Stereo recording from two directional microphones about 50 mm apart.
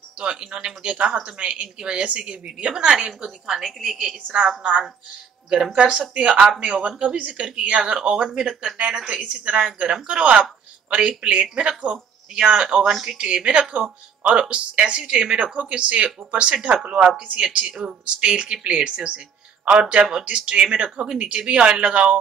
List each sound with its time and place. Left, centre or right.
0.2 s speech: centre
4.0 s speech: centre
13.2 s speech: right